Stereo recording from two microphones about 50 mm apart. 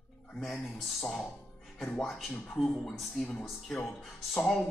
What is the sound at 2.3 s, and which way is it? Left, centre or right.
Speech, left.